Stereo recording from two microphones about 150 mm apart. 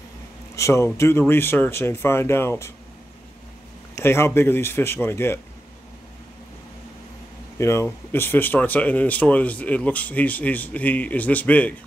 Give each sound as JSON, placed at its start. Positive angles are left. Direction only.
{"t": 0.6, "sound": "speech", "side_deg": 20}
{"t": 3.9, "sound": "speech", "side_deg": 15}
{"t": 7.5, "sound": "speech", "side_deg": 20}